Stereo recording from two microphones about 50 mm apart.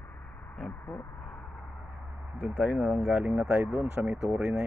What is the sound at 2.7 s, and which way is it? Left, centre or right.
Speech, right.